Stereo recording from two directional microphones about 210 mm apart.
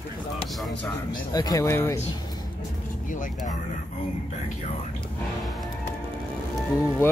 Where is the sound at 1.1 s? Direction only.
20° left (ahead or behind).